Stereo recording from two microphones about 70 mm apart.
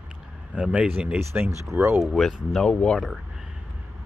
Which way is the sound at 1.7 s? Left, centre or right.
Right.